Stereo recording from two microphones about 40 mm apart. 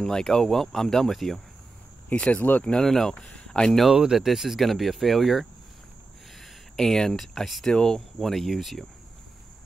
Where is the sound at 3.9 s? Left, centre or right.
Centre.